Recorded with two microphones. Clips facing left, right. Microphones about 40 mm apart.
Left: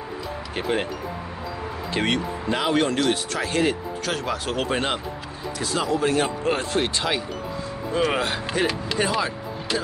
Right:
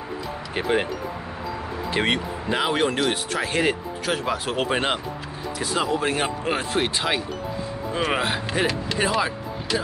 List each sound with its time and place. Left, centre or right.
0.6 s speech: centre
1.9 s speech: centre